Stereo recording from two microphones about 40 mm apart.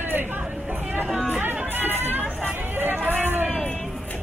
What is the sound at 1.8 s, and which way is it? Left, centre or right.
Hubbub, right.